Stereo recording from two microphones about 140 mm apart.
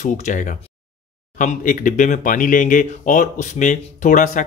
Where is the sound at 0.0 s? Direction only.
65° left (ahead or behind).